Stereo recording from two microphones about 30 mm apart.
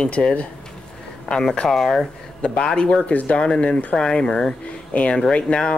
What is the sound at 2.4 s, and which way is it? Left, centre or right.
Speech, left.